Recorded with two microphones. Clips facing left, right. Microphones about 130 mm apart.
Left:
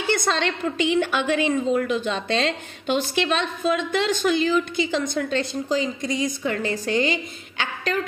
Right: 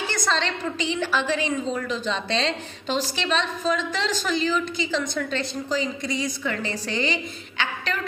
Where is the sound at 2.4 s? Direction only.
35° right (ahead or behind).